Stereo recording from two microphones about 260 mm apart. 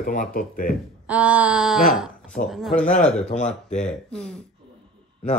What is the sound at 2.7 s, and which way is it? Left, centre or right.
Speech, left.